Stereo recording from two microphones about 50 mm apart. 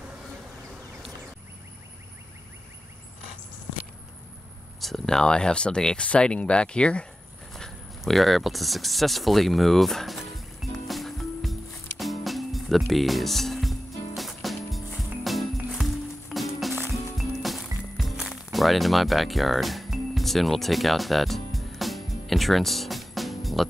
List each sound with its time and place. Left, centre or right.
4.7 s speech: centre; by 7.1 s left
8.0 s a sound: centre
12.0 s music: centre